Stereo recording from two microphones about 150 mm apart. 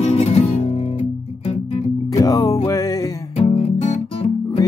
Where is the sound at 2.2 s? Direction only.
25° left (ahead or behind).